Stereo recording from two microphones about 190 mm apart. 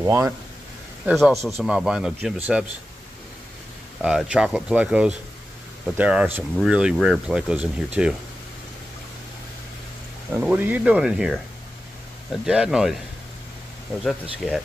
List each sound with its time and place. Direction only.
0.0 s speech: 15° right (ahead or behind)
1.0 s speech: centre (ahead or behind)
4.0 s speech: 5° right (ahead or behind)
10.3 s speech: 10° right (ahead or behind)